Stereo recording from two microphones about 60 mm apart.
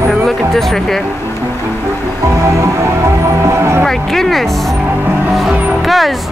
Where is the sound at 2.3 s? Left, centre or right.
Right.